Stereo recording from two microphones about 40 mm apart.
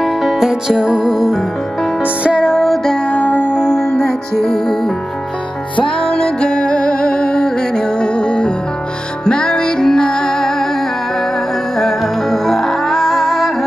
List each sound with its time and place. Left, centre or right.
0.0 s music: centre
2.5 s music: centre
3.1 s music: left
3.9 s music: centre
5.9 s music: centre
11.8 s music: centre